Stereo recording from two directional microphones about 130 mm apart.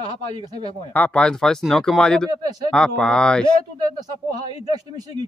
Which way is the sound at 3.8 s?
30° right (ahead or behind).